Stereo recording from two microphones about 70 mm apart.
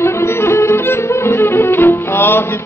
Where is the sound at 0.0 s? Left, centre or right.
Left.